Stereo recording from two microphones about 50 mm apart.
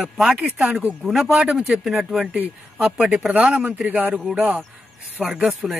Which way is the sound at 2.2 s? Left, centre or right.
Right.